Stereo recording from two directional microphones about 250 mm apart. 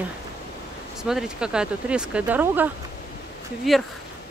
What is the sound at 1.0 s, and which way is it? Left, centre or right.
Speech, centre.